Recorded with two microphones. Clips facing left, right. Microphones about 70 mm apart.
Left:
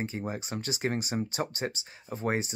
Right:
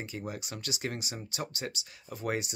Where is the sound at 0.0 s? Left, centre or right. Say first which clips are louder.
Left 5 dB; left.